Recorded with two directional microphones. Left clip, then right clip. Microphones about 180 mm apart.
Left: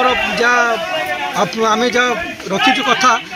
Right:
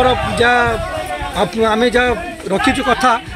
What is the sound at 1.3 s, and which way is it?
Speech, 30° right (ahead or behind).